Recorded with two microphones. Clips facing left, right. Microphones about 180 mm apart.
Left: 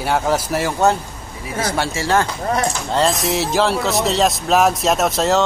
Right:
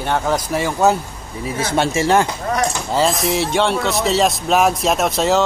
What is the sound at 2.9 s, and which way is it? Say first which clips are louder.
Speech: even; centre (ahead or behind).